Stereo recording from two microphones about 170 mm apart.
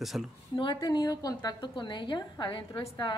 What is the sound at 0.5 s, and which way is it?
A woman's voice, 25° left (ahead or behind).